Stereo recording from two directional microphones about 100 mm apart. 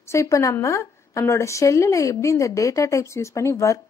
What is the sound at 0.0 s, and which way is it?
A woman's voice, 30° left (ahead or behind).